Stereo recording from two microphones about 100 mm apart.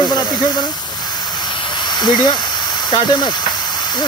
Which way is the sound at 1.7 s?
45° left (ahead or behind).